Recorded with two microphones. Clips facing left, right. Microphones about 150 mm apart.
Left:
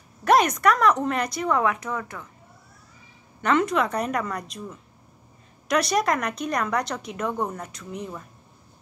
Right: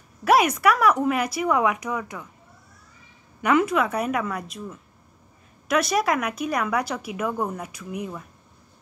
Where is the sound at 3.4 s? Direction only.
5° right (ahead or behind).